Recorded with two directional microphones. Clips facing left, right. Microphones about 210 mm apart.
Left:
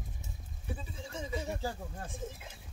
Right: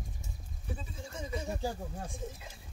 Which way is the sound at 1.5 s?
10° right (ahead or behind).